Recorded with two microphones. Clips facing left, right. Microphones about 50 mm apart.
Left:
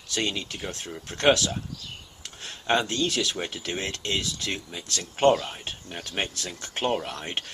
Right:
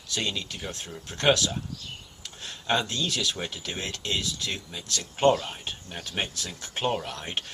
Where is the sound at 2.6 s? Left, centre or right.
Centre.